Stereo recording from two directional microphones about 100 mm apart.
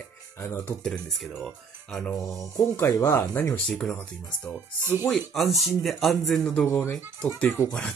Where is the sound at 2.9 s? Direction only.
35° left (ahead or behind).